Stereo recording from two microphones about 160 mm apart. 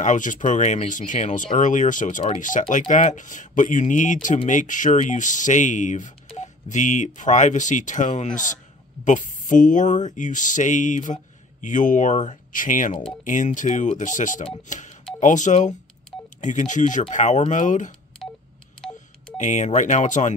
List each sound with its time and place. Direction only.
0.0 s speech: 55° left (ahead or behind)
19.3 s speech: 50° left (ahead or behind)